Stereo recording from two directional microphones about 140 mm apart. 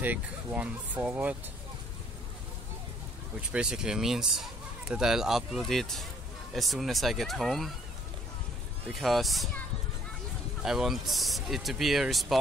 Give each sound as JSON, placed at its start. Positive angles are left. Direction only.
{"t": 0.0, "sound": "speech", "side_deg": -10}
{"t": 3.3, "sound": "speech", "side_deg": -5}
{"t": 9.0, "sound": "speech", "side_deg": 0}
{"t": 10.6, "sound": "speech", "side_deg": -5}